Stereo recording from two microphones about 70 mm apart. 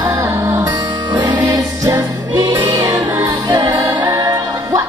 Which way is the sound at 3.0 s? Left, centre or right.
Right.